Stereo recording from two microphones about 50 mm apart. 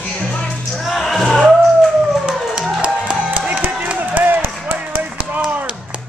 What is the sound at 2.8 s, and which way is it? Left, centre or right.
Music, right.